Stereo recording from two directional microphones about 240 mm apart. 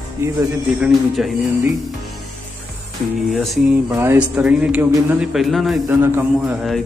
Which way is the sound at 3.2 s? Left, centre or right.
Centre.